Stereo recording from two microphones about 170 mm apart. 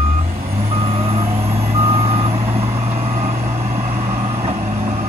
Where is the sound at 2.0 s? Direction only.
35° right (ahead or behind).